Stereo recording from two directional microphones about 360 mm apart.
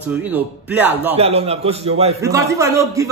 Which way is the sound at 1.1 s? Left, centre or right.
Centre.